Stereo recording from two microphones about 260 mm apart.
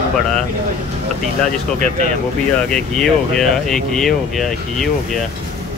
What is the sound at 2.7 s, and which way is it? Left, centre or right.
Speech, centre.